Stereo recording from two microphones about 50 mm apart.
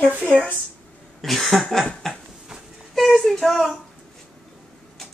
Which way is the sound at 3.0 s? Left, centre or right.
Centre.